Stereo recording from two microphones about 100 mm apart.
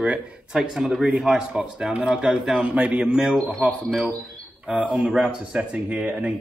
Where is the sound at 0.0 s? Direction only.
10° right (ahead or behind).